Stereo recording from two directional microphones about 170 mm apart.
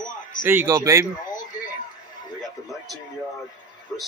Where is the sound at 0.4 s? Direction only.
15° right (ahead or behind).